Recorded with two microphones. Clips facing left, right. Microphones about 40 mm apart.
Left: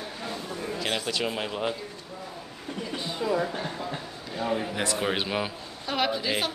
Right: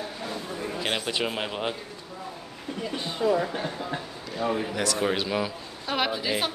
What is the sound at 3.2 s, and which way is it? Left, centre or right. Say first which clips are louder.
Speech: right 3 dB; centre.